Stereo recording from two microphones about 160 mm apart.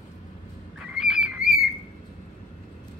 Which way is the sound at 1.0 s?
5° right (ahead or behind).